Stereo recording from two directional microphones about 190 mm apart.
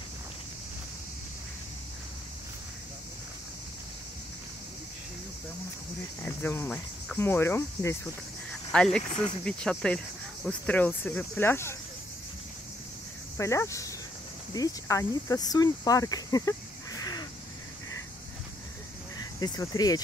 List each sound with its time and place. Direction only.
6.2 s cricket: 10° left (ahead or behind)
9.4 s speech: 5° left (ahead or behind)
13.4 s speech: 15° left (ahead or behind)
19.1 s speech: 20° left (ahead or behind)